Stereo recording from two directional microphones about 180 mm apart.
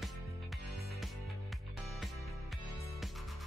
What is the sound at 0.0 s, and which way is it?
Music, centre (ahead or behind).